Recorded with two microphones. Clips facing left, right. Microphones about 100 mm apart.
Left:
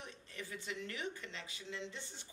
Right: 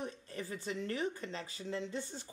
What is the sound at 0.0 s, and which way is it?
Speech, 40° right (ahead or behind).